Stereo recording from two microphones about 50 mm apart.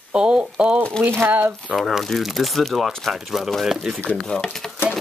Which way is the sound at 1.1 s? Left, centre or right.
Right.